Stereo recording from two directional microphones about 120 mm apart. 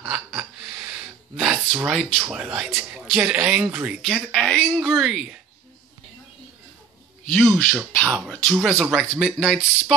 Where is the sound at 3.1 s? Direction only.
10° right (ahead or behind).